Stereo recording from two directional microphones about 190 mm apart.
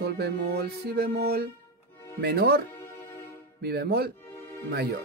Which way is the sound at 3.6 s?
55° right (ahead or behind).